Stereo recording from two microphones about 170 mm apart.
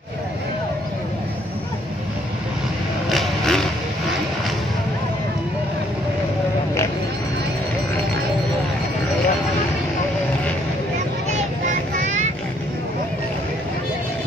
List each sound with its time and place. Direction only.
3.1 s vehicle: centre (ahead or behind)
12.0 s vehicle: 45° right (ahead or behind)